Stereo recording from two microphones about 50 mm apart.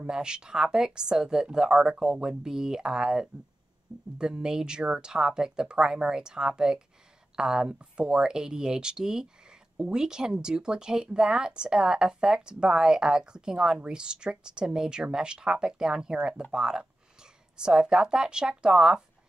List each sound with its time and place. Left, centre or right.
0.0 s speech: centre